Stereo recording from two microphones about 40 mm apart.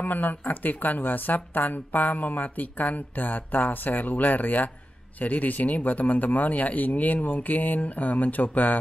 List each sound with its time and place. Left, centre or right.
0.0 s speech: left